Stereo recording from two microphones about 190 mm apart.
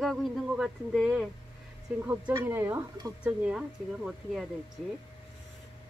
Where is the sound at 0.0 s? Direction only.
Centre (ahead or behind).